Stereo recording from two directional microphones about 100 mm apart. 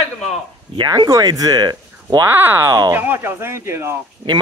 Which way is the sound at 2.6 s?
35° right (ahead or behind).